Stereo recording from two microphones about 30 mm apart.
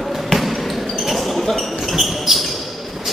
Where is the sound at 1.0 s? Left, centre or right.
Centre.